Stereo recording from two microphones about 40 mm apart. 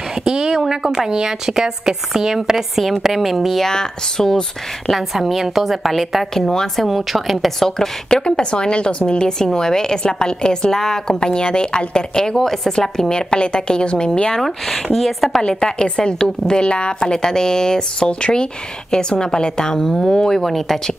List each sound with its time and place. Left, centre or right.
0.2 s a woman's voice: centre
3.6 s a woman's voice: centre
4.8 s a woman's voice: centre
6.3 s a woman's voice: centre
6.9 s a woman's voice: centre
7.6 s a woman's voice: centre
12.4 s a woman's voice: centre
13.3 s a woman's voice: left
14.3 s a woman's voice: centre
15.4 s a woman's voice: left